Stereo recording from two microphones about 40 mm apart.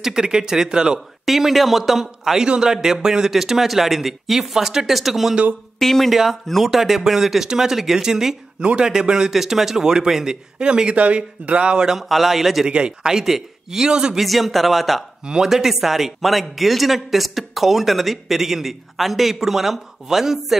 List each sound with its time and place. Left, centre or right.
0.0 s speech: centre
0.9 s a man's voice: centre
5.8 s speech: centre
6.0 s speech: centre
9.3 s speech: centre
10.6 s speech: right
12.0 s a man's voice: centre
12.6 s speech: centre
14.1 s a man's voice: centre
15.2 s a man's voice: centre